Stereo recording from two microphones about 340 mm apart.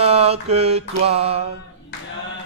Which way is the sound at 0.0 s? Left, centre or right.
Centre.